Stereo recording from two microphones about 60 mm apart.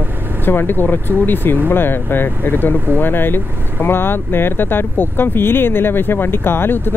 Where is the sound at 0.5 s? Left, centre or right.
Left.